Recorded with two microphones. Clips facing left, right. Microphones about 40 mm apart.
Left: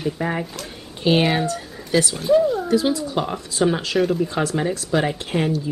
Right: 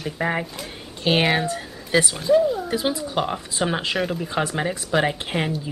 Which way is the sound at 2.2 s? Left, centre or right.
Centre.